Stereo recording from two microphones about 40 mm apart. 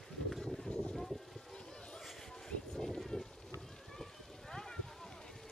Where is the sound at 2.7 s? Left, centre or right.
Centre.